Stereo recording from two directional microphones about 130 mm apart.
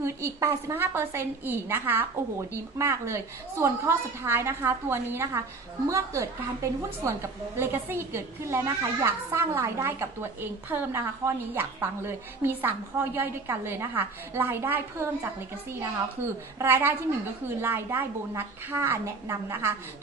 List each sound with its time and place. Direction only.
0.0 s a woman's voice: 20° right (ahead or behind)